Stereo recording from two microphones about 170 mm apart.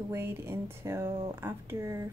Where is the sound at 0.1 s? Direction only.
15° right (ahead or behind).